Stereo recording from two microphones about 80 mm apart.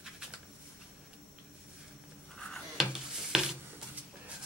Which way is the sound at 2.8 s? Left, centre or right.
Centre.